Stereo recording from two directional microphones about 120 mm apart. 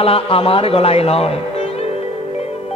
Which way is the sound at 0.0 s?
50° left (ahead or behind).